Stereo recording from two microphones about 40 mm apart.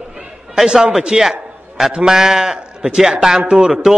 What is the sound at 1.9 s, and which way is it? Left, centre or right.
A man's voice, centre.